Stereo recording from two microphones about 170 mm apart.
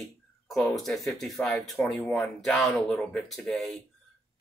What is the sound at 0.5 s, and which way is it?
Speech, centre (ahead or behind).